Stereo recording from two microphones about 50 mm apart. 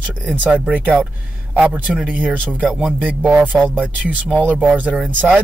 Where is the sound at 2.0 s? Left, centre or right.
Right.